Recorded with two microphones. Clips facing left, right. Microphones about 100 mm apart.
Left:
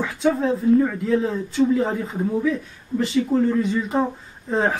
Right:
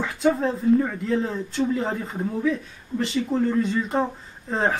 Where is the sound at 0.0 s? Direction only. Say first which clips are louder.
Left 1 dB; centre (ahead or behind).